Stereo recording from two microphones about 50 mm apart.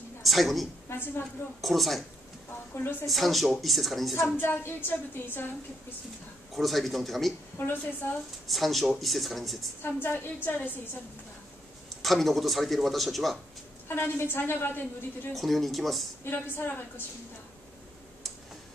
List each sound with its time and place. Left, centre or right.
0.2 s a woman's voice: centre
0.8 s a woman's voice: left
1.6 s speech: centre
2.7 s a woman's voice: left
3.1 s speech: centre
4.4 s a woman's voice: left
6.5 s speech: centre
7.6 s a woman's voice: left
8.5 s speech: centre
9.8 s a woman's voice: left
12.0 s speech: centre
13.8 s a woman's voice: left
15.3 s speech: centre
16.3 s a woman's voice: left